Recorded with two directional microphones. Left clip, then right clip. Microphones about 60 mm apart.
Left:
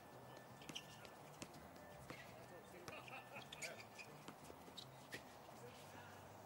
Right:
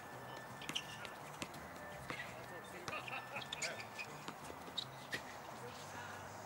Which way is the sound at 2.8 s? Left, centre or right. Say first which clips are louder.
Right 10 dB; centre.